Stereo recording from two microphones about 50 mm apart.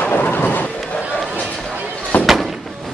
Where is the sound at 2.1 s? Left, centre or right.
Left.